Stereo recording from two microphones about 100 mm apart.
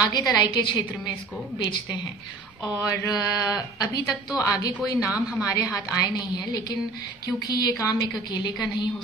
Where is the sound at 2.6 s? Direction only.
35° left (ahead or behind).